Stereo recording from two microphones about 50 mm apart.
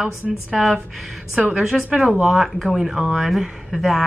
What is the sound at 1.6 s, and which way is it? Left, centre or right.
Speech, centre.